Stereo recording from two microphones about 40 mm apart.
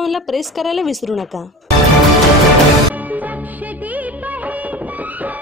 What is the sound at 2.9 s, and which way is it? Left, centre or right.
Music of bollywood, right.